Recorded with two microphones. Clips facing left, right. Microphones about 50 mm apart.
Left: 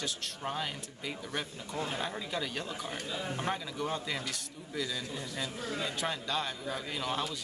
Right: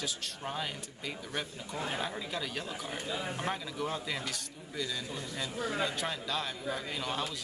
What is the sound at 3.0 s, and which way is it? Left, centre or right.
Speech, centre.